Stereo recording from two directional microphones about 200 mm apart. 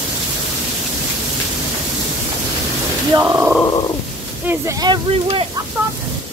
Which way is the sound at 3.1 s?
15° right (ahead or behind).